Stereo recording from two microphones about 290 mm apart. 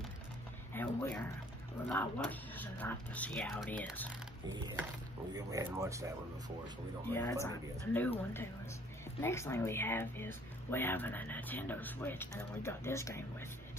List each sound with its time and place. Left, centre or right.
0.7 s a sound: centre
1.9 s speech: centre
5.3 s speech: centre
7.1 s speech: centre